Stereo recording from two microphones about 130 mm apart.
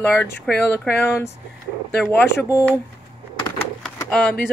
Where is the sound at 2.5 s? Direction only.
20° left (ahead or behind).